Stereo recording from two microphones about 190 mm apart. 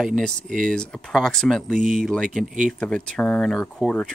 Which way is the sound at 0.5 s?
45° right (ahead or behind).